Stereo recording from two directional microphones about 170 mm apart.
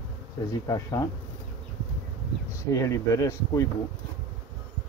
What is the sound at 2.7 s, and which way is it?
Speech, 15° left (ahead or behind).